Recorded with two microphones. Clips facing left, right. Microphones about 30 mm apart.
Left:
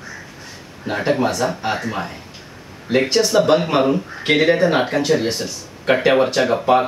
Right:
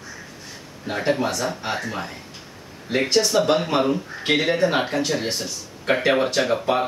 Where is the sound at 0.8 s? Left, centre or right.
Centre.